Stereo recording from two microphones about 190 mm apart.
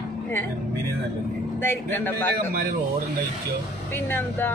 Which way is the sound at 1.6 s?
10° left (ahead or behind).